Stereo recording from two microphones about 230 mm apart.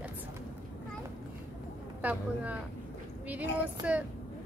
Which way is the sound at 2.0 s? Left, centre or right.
Centre.